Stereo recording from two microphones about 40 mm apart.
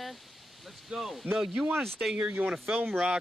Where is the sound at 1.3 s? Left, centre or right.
Right.